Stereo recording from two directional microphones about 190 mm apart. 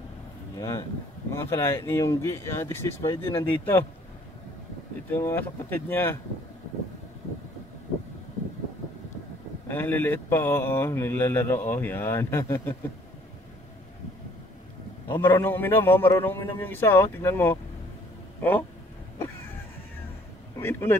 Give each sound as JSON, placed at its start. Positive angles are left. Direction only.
{"t": 0.6, "sound": "speech", "side_deg": 15}
{"t": 5.1, "sound": "speech", "side_deg": 10}
{"t": 9.7, "sound": "speech", "side_deg": 10}
{"t": 15.1, "sound": "speech", "side_deg": 10}
{"t": 20.5, "sound": "speech", "side_deg": 15}